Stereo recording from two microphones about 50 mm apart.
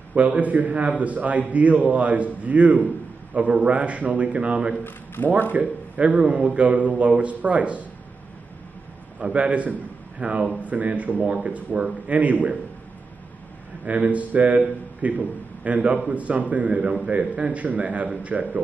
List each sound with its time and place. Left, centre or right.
0.1 s a man's voice: right
4.8 s a man's voice: left
5.5 s speech: right
9.2 s a man's voice: right
13.8 s a man's voice: right